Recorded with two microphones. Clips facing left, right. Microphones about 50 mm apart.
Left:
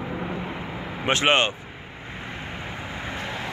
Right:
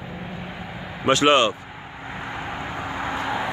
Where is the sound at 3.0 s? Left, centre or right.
Right.